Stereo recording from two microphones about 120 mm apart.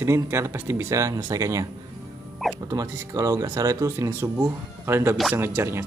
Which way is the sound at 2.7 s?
30° right (ahead or behind).